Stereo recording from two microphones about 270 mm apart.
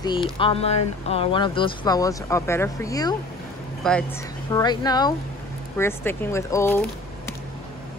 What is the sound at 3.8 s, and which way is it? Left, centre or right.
Speech, centre.